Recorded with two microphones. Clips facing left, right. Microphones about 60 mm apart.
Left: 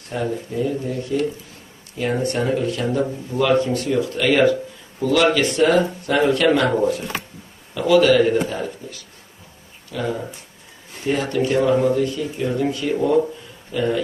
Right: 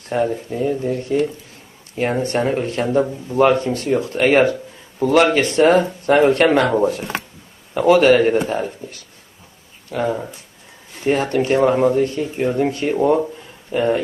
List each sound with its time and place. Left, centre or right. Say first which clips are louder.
0.1 s a man's voice: right 4 dB; right